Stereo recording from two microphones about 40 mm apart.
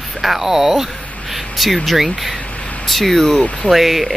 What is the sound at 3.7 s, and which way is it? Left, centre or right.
Speech, centre.